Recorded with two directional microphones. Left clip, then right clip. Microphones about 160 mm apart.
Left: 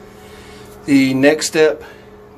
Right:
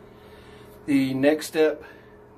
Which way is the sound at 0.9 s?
20° left (ahead or behind).